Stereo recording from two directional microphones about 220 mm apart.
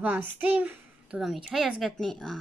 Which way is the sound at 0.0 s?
10° right (ahead or behind).